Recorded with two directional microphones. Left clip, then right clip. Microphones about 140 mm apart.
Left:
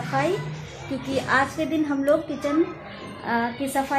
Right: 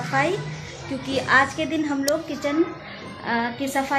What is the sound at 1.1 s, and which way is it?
A woman's voice, 5° left (ahead or behind).